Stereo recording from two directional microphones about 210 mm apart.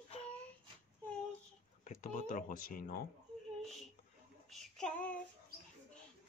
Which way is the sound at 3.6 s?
Centre (ahead or behind).